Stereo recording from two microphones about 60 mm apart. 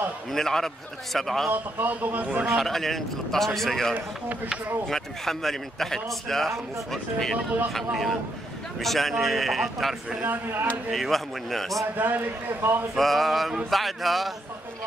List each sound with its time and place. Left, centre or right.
0.3 s a man's voice: centre
1.5 s a man's voice: right
2.4 s a man's voice: centre
10.2 s a man's voice: right
10.9 s a man's voice: centre
12.0 s a man's voice: right
12.9 s a man's voice: centre